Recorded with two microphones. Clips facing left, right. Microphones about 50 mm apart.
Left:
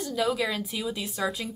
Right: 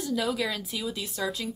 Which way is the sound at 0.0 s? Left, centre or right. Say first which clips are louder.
Left 1 dB; centre.